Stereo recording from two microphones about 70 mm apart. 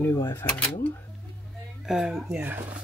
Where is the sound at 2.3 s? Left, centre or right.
Right.